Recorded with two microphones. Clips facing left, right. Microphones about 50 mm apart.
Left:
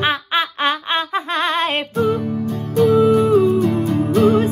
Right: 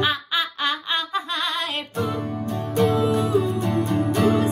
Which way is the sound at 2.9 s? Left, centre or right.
Left.